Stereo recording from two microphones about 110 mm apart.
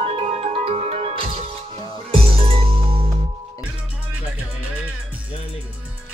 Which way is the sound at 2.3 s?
60° right (ahead or behind).